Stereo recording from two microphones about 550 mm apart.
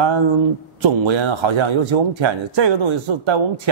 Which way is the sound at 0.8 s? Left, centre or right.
Right.